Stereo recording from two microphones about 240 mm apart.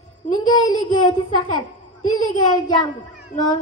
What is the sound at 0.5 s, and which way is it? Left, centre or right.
Speech, centre.